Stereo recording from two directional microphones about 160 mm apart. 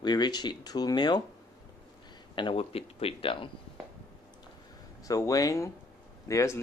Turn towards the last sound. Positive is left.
turn(degrees=20)  # may be behind; listen again after turning